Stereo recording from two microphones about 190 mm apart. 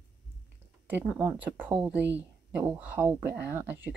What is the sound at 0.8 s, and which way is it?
A woman's voice, 10° right (ahead or behind).